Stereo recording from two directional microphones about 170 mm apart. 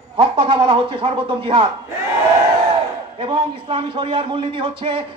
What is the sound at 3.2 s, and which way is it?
A man's voice, 30° right (ahead or behind).